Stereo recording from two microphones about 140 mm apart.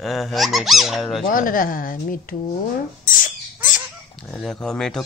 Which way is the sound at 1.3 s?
80° left.